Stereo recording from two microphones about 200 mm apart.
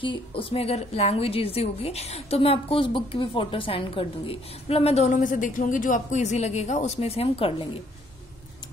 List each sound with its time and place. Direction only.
0.0 s a woman's voice: 25° left (ahead or behind)